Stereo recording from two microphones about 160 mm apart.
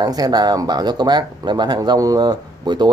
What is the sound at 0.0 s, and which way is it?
A man's voice, 25° right (ahead or behind).